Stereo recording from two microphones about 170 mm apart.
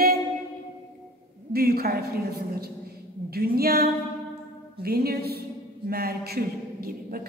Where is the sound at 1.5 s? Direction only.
65° right (ahead or behind).